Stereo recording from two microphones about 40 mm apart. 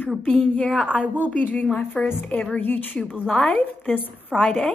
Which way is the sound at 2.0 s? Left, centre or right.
Centre.